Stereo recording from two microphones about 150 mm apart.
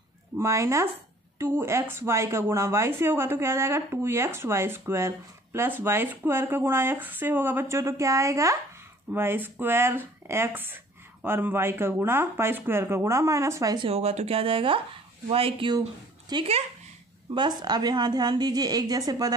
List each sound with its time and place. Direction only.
0.4 s a woman's voice: 20° right (ahead or behind)
13.8 s a woman's voice: 45° right (ahead or behind); by 19.3 s 25° right (ahead or behind)